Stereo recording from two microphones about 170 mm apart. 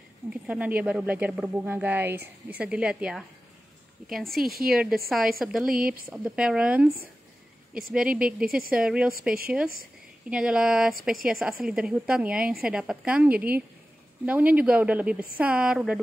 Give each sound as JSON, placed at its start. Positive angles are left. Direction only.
{"t": 0.3, "sound": "a woman's voice", "side_deg": -10}
{"t": 4.4, "sound": "a woman's voice", "side_deg": -60}
{"t": 4.6, "sound": "a woman's voice", "side_deg": -5}
{"t": 7.9, "sound": "speech", "side_deg": -5}
{"t": 8.5, "sound": "a woman's voice", "side_deg": -60}
{"t": 8.7, "sound": "speech", "side_deg": -5}
{"t": 10.3, "sound": "a woman's voice", "side_deg": -5}